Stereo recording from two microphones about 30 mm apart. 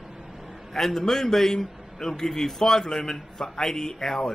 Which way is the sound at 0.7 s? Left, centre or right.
Centre.